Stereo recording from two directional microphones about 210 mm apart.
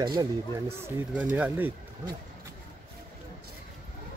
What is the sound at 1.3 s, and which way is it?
Speech, 10° right (ahead or behind).